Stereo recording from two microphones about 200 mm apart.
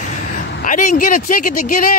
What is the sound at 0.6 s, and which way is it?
Speech, 40° left (ahead or behind).